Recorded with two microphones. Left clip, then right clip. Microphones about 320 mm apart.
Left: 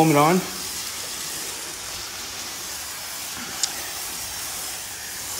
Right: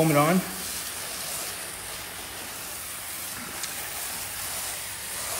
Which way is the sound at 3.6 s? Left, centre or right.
Centre.